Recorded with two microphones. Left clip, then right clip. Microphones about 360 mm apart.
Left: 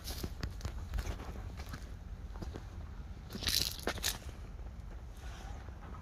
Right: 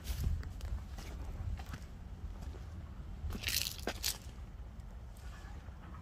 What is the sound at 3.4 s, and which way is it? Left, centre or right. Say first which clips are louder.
Crushing: left 3 dB; centre.